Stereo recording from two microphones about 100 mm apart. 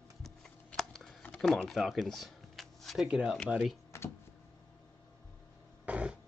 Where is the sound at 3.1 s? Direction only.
5° right (ahead or behind).